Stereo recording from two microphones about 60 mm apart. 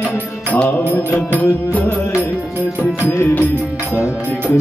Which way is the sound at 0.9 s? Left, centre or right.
Left.